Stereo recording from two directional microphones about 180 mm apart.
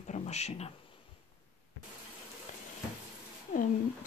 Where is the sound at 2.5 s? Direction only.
45° left (ahead or behind).